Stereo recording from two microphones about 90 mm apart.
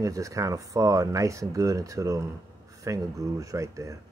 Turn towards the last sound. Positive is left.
turn(degrees=-35)  # may be behind; listen again after turning